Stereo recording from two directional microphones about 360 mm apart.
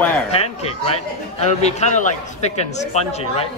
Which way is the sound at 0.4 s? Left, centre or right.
Centre.